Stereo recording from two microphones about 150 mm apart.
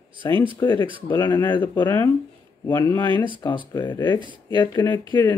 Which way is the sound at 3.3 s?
30° left (ahead or behind).